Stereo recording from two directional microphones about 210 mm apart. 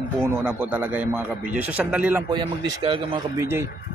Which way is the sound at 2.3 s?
20° right (ahead or behind).